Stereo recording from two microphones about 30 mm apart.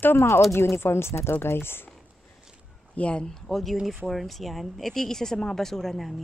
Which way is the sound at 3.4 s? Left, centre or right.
Centre.